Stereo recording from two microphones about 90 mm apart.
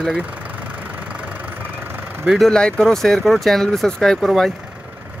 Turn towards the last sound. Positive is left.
turn(degrees=5)  # may be behind; listen again after turning